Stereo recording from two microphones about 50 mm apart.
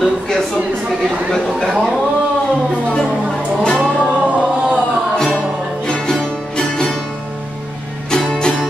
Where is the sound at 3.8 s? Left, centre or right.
Centre.